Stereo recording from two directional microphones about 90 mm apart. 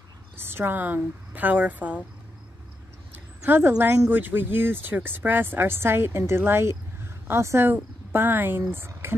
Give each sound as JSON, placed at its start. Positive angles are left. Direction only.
{"t": 0.5, "sound": "speech", "side_deg": -25}
{"t": 3.4, "sound": "speech", "side_deg": -20}